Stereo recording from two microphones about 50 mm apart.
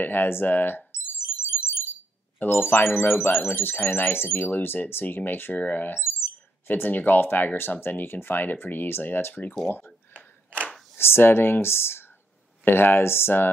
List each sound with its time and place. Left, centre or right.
0.0 s speech: left
2.3 s speech: left
4.5 s speech: left
10.1 s a sound: right
11.0 s speech: left